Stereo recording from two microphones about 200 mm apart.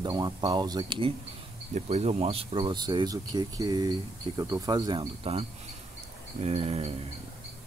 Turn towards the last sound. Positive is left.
turn(degrees=-30)  # may be behind; listen again after turning